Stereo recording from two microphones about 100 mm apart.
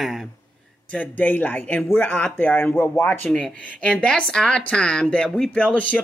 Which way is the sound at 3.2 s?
5° left (ahead or behind).